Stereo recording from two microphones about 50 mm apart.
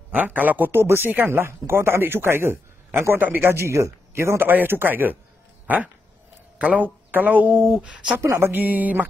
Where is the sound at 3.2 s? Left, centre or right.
Right.